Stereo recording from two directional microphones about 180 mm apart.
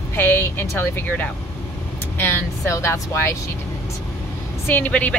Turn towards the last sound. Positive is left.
turn(degrees=10)  # may be behind; listen again after turning